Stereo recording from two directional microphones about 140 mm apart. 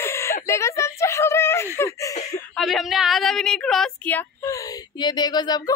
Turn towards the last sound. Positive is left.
turn(degrees=30)  # may be behind; listen again after turning